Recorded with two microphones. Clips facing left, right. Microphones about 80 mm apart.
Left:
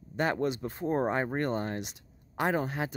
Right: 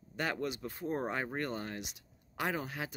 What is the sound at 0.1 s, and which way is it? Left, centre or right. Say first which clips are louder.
Speech: left 7 dB; left.